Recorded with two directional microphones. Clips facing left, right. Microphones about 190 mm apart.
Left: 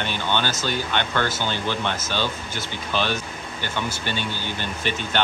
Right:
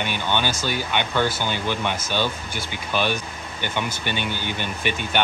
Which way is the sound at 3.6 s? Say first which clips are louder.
Right 1 dB; 15° right (ahead or behind).